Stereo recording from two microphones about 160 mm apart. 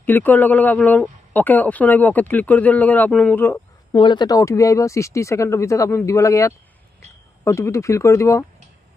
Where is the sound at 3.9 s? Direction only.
30° left (ahead or behind).